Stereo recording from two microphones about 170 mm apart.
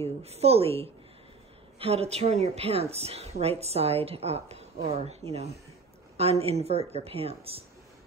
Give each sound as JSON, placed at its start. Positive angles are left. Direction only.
{"t": 0.2, "sound": "a woman's voice", "side_deg": -35}